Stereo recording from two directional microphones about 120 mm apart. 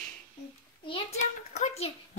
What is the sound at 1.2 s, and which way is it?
Speech, 85° left.